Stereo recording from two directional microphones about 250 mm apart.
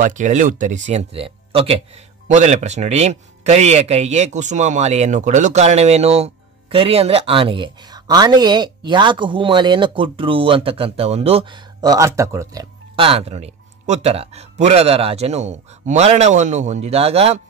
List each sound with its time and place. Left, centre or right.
0.0 s a man's voice: right